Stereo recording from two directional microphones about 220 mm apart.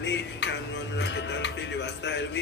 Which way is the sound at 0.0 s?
50° left (ahead or behind).